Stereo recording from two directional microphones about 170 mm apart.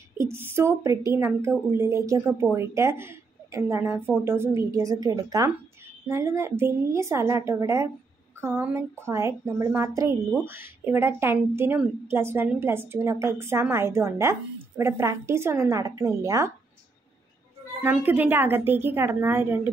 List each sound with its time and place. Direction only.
0.2 s a woman's voice: 15° right (ahead or behind)
17.8 s speech: 10° right (ahead or behind)